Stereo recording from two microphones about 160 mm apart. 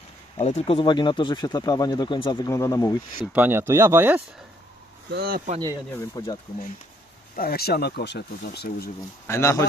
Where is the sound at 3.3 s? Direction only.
15° right (ahead or behind).